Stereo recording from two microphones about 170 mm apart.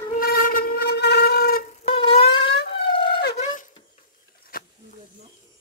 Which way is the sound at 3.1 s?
65° left (ahead or behind).